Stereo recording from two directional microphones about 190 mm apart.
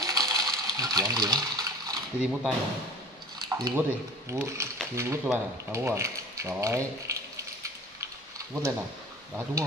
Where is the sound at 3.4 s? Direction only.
20° right (ahead or behind).